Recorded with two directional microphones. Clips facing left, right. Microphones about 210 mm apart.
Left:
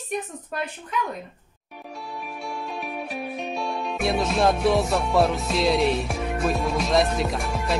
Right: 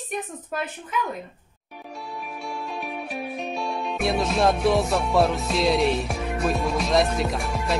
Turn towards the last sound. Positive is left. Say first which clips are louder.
# even
turn(degrees=0)  # may be behind; listen again after turning